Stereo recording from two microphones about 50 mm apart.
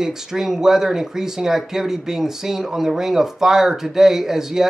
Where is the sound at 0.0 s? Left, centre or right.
Centre.